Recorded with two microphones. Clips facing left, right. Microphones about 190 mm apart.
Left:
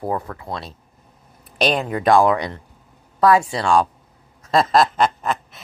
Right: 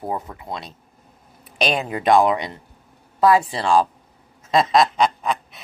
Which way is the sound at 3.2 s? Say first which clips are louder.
Left 1 dB; centre (ahead or behind).